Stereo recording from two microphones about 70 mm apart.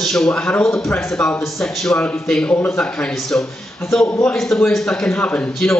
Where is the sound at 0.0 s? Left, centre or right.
Centre.